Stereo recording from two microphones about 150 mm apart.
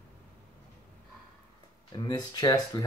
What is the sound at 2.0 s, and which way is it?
Speech, 25° left (ahead or behind).